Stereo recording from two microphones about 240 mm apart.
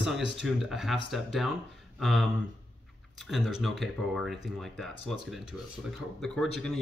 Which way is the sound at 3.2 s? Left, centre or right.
Centre.